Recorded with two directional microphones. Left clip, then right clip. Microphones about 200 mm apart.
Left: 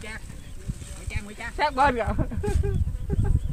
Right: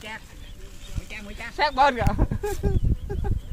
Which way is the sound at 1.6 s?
55° right (ahead or behind).